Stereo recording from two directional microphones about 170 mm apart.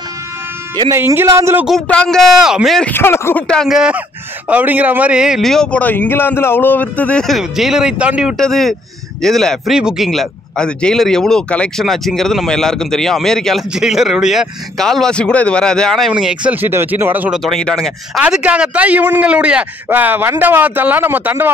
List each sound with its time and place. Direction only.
0.9 s a man's voice: 15° right (ahead or behind)
1.7 s speech: 5° left (ahead or behind)
2.9 s speech: 15° left (ahead or behind); by 17.4 s 10° right (ahead or behind)
17.4 s a man's voice: 5° left (ahead or behind)